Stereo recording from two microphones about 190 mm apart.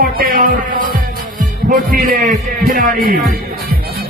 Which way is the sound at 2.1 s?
50° right (ahead or behind).